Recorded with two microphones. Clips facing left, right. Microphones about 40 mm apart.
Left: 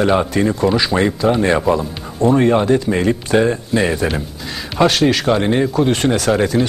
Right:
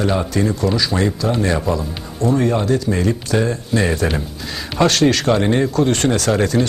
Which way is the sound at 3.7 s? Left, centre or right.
Centre.